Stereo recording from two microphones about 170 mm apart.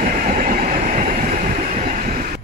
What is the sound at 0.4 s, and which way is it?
Train, 50° right (ahead or behind).